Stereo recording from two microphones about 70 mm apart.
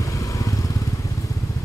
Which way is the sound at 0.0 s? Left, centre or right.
Left.